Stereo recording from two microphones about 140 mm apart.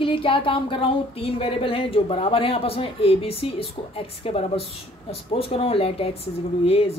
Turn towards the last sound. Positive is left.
turn(degrees=45)  # may be behind; listen again after turning